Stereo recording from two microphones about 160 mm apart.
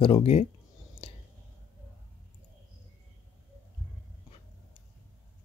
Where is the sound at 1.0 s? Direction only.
40° left (ahead or behind).